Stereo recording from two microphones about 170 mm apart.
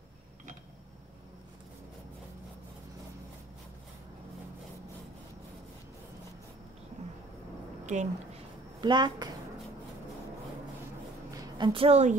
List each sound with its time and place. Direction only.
7.0 s vehicle: 40° right (ahead or behind)
7.8 s a sound: 45° right (ahead or behind)
8.8 s speech: 25° right (ahead or behind)
11.3 s a woman's voice: 25° right (ahead or behind); by 12.2 s 40° right (ahead or behind)